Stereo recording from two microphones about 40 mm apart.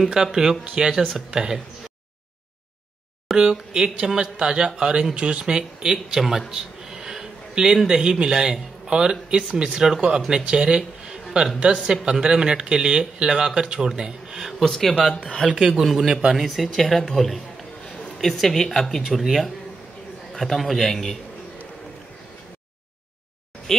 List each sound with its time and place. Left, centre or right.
0.1 s speech: centre
3.3 s speech: centre
3.7 s speech: centre
6.1 s speech: centre
6.5 s a sound: centre
8.0 s speech: right
14.6 s speech: centre
16.1 s speech: centre
16.3 s a man's voice: centre